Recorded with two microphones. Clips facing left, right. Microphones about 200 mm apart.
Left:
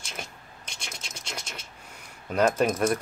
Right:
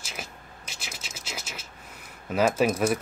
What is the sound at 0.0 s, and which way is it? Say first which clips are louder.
Scratch: even; 5° right (ahead or behind).